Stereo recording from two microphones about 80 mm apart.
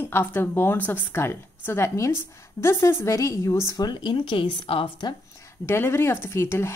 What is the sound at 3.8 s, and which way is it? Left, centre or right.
Speech, left.